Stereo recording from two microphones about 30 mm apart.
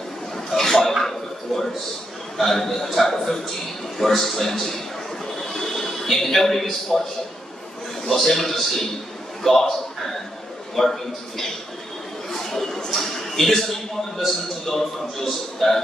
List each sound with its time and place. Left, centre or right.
0.5 s cough: centre
1.0 s a sound: centre
2.3 s a man's voice: centre
5.3 s chuckle: centre
8.1 s a man's voice: centre
12.3 s a sound: centre
12.9 s a man's voice: centre